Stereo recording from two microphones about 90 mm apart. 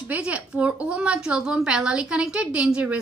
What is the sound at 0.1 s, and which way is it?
A woman's voice, 15° right (ahead or behind).